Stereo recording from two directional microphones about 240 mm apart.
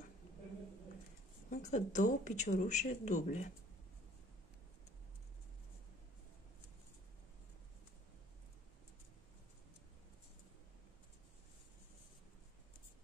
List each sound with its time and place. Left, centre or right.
1.5 s speech: left